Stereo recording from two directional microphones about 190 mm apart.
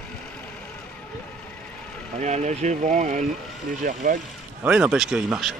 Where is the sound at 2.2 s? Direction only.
35° right (ahead or behind).